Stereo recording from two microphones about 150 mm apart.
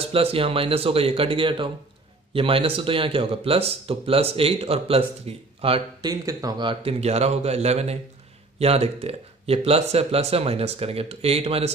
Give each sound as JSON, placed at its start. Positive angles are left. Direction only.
{"t": 0.0, "sound": "speech", "side_deg": -40}
{"t": 5.9, "sound": "speech", "side_deg": -25}
{"t": 6.7, "sound": "speech", "side_deg": -40}